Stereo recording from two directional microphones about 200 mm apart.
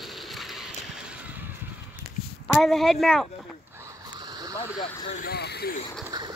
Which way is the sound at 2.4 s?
5° left (ahead or behind).